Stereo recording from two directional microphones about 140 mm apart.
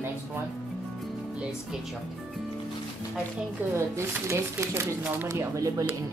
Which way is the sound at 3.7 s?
20° right (ahead or behind).